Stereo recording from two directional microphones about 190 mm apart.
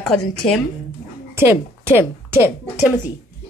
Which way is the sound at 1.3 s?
10° right (ahead or behind).